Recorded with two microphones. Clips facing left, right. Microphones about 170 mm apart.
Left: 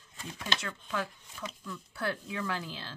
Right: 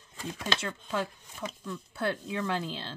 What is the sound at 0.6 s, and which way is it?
Speech, 25° right (ahead or behind).